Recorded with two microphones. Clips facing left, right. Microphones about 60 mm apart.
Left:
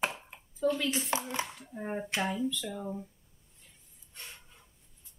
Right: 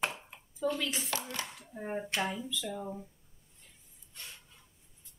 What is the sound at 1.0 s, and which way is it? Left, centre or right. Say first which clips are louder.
Speech: left 5 dB; left.